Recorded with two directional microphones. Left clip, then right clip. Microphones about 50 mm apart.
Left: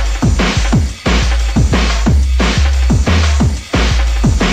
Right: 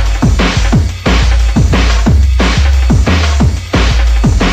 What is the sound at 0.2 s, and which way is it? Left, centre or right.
Music, right.